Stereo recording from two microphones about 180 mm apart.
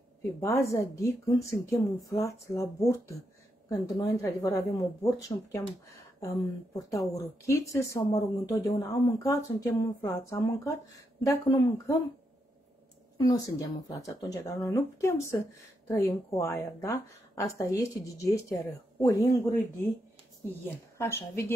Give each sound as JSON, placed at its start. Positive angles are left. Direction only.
{"t": 0.2, "sound": "speech", "side_deg": 15}
{"t": 13.2, "sound": "speech", "side_deg": 20}